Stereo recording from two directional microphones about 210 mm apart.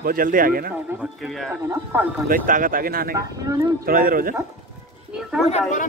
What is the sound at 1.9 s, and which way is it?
Speech, 10° right (ahead or behind).